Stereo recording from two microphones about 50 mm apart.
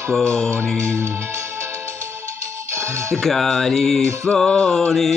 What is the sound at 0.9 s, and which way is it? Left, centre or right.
Music, right.